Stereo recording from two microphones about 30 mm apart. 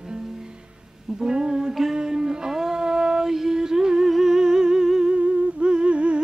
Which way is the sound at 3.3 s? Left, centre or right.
Centre.